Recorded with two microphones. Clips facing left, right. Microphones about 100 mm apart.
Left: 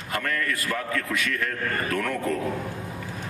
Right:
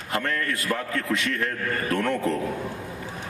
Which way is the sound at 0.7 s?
25° right (ahead or behind).